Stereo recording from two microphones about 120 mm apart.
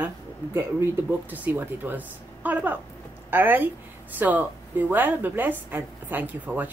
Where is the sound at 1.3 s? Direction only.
15° right (ahead or behind).